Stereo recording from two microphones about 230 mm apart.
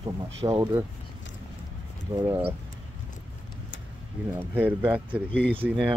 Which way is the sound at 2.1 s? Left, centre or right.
Centre.